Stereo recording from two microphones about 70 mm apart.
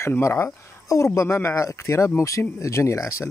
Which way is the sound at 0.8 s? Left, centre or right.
Left.